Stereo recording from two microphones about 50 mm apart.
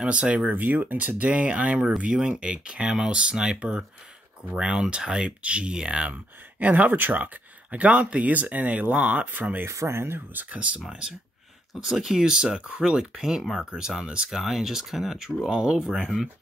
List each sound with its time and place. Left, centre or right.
0.0 s speech: right
7.7 s speech: right
9.7 s speech: right
10.3 s speech: right
10.9 s speech: centre